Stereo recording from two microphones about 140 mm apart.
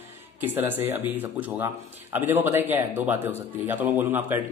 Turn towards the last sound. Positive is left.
turn(degrees=-15)  # may be behind; listen again after turning